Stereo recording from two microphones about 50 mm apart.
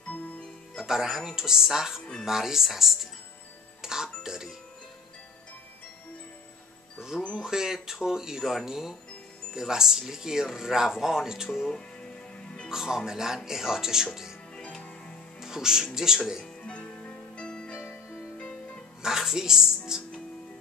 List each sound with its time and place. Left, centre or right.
0.1 s music: left
0.7 s speech: centre
3.8 s music: centre
7.0 s music: centre
7.3 s speech: centre
11.7 s music: centre
12.6 s speech: centre
14.6 s music: left
15.4 s speech: centre
16.6 s music: left
19.0 s speech: centre